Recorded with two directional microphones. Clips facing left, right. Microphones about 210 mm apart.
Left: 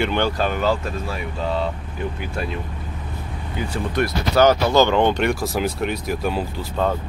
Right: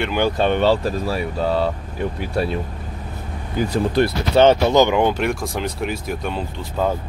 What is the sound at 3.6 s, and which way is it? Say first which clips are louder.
Speech: right 5 dB; 40° right (ahead or behind).